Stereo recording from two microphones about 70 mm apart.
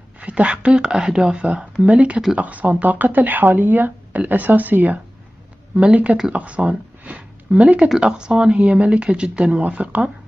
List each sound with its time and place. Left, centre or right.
0.2 s speech: centre